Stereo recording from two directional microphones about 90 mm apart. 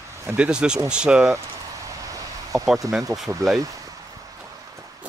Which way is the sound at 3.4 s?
40° right (ahead or behind).